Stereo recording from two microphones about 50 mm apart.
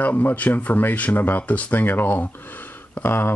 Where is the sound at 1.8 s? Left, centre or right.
Left.